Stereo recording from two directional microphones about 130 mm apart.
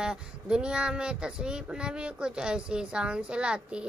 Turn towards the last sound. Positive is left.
turn(degrees=-5)  # may be behind; listen again after turning